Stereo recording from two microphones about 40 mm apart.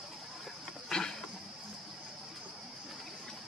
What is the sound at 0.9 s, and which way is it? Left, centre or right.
Insect, centre.